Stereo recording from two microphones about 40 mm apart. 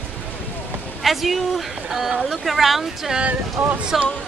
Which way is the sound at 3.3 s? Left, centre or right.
Right.